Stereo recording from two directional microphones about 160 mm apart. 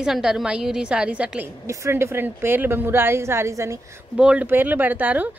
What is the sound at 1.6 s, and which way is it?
Speech, 20° right (ahead or behind).